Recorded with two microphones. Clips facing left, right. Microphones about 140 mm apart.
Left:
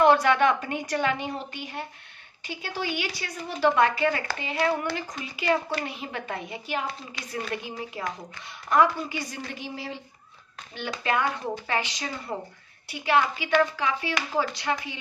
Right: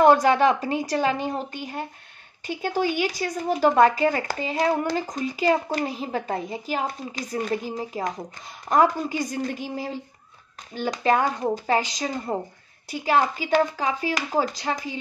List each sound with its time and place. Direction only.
0.0 s speech: 40° right (ahead or behind)